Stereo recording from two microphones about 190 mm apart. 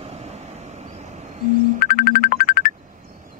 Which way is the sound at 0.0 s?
35° right (ahead or behind).